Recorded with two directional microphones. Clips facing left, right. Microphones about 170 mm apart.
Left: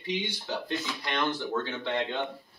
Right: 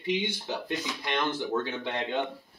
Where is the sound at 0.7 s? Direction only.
15° right (ahead or behind).